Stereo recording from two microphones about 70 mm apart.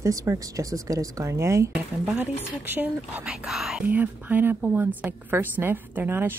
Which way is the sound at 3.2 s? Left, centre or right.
Centre.